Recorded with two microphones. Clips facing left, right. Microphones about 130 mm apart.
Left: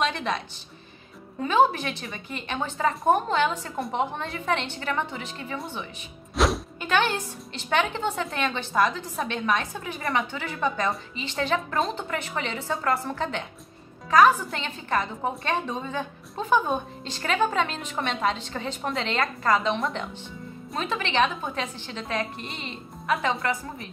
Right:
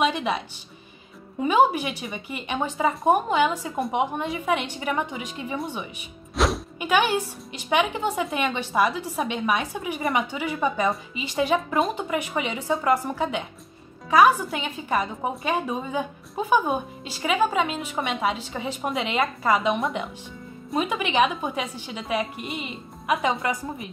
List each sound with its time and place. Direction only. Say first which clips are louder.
0.0 s music: right 3 dB; 10° right (ahead or behind)
1.4 s a woman's voice: right 2 dB; 10° right (ahead or behind)
6.3 s music: even; centre (ahead or behind)
6.8 s a woman's voice: right 3 dB; 10° right (ahead or behind)